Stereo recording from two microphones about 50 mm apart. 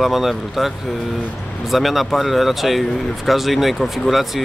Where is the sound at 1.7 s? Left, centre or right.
Centre.